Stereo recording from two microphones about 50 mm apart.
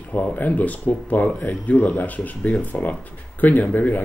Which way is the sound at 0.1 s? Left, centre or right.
Left.